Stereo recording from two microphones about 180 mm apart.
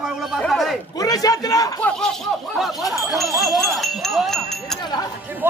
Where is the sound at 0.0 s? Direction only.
Centre (ahead or behind).